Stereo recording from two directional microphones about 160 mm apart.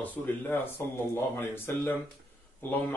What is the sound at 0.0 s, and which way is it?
Speech, 10° left (ahead or behind).